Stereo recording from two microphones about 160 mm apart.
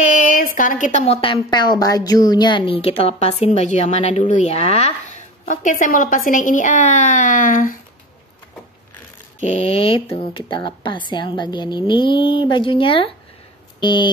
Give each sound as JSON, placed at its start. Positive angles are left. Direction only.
{"t": 0.1, "sound": "a woman's voice", "side_deg": 55}
{"t": 9.4, "sound": "speech", "side_deg": 40}